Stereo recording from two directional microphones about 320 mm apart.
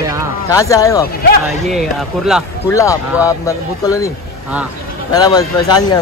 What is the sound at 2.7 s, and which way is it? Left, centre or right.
A man's voice, centre.